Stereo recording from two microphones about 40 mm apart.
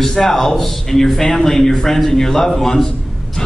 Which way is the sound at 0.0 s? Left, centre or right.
Centre.